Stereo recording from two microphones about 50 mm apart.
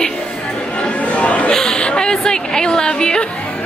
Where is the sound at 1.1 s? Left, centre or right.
Left.